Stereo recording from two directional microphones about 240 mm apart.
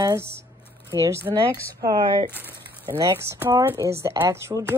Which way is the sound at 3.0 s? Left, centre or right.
Centre.